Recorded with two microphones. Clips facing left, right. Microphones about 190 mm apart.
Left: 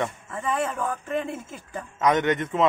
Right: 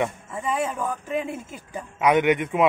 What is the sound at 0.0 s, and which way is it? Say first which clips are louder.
A man's voice: right 2 dB; 10° right (ahead or behind).